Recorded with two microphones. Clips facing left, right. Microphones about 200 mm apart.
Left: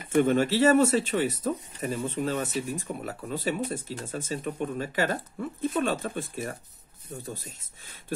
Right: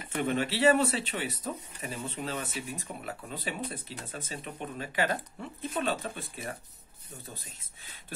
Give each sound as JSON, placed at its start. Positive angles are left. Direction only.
{"t": 0.1, "sound": "speech", "side_deg": 50}